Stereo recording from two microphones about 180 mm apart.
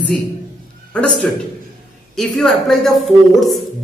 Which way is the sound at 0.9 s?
5° left (ahead or behind).